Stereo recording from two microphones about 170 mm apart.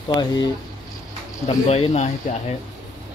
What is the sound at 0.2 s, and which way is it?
Speech, 25° left (ahead or behind).